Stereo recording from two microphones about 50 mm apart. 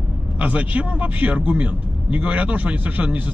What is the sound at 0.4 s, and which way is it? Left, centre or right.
A man's voice, right.